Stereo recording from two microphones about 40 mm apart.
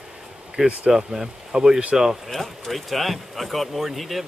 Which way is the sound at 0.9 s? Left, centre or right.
Centre.